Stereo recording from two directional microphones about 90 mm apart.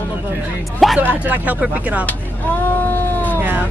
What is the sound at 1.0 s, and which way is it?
Speech, 20° right (ahead or behind).